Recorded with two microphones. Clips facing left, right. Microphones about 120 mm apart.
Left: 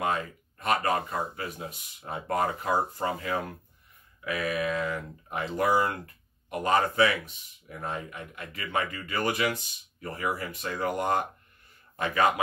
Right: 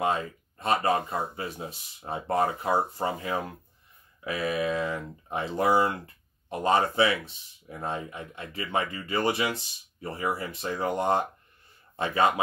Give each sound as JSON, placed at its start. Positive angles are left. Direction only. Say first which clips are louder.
{"t": 0.0, "sound": "speech", "louder": "right 2 dB", "side_deg": -25}